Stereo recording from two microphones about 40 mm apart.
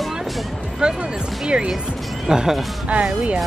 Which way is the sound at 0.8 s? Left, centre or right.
Right.